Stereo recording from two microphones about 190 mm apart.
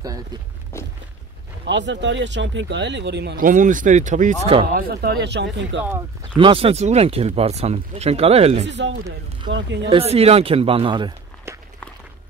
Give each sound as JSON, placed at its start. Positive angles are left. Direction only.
{"t": 0.7, "sound": "a sound", "side_deg": 15}
{"t": 1.7, "sound": "speech", "side_deg": -70}
{"t": 3.4, "sound": "speech", "side_deg": -40}
{"t": 4.7, "sound": "speech", "side_deg": -55}
{"t": 6.3, "sound": "speech", "side_deg": -30}
{"t": 8.6, "sound": "speech", "side_deg": -65}
{"t": 9.5, "sound": "speech", "side_deg": -75}
{"t": 9.8, "sound": "speech", "side_deg": -30}
{"t": 11.5, "sound": "walk", "side_deg": -15}